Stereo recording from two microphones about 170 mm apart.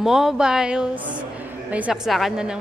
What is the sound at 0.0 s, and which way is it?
A woman's voice, centre (ahead or behind).